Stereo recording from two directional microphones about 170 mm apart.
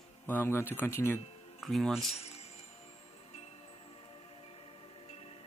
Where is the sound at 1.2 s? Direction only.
35° left (ahead or behind).